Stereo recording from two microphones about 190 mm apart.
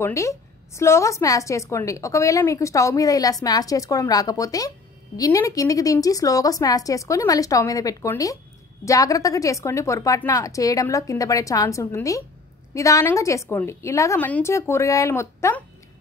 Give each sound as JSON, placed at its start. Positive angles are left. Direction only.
{"t": 0.0, "sound": "a woman's voice", "side_deg": 15}